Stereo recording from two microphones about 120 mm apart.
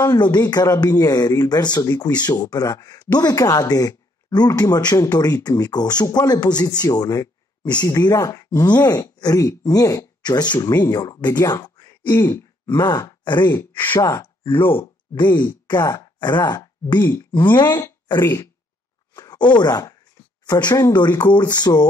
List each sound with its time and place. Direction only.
0.0 s speech: 35° left (ahead or behind)
12.1 s throat clearing: 20° left (ahead or behind)
13.2 s speech: 40° left (ahead or behind)
13.5 s speech: 20° left (ahead or behind)
13.9 s speech: 30° left (ahead or behind)
14.5 s speech: 15° left (ahead or behind)
15.1 s speech: 35° left (ahead or behind)